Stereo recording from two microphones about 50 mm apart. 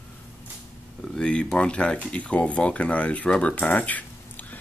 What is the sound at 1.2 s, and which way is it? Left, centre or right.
Speech, centre.